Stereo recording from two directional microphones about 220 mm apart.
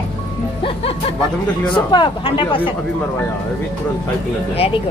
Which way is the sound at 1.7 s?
20° left (ahead or behind).